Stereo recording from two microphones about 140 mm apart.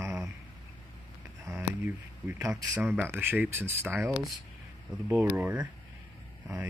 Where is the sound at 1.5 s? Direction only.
15° right (ahead or behind).